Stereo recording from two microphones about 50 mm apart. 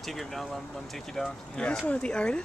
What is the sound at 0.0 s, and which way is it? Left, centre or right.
Speech, centre.